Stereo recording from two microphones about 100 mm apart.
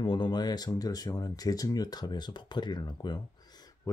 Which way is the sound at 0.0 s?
50° left (ahead or behind).